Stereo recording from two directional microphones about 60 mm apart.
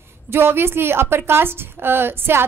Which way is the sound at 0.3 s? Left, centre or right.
Right.